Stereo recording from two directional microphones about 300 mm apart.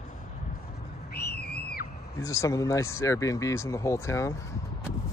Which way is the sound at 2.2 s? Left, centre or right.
Centre.